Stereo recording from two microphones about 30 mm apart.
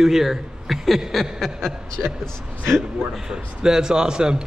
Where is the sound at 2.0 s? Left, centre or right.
Right.